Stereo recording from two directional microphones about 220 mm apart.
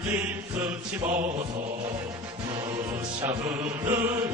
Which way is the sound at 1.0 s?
35° right (ahead or behind).